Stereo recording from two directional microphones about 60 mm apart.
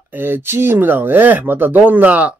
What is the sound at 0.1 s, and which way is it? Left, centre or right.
Speech, right.